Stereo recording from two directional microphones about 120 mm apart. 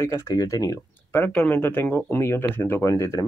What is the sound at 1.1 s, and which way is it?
Speech, 10° left (ahead or behind).